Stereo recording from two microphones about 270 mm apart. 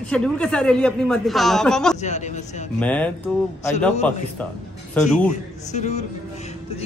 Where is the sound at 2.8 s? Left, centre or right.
Centre.